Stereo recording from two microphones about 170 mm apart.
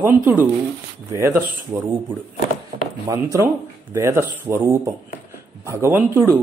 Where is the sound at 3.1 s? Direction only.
20° right (ahead or behind).